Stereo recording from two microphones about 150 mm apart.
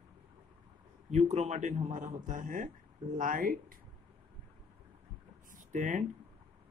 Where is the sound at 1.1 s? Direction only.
45° right (ahead or behind); by 3.7 s 70° right (ahead or behind).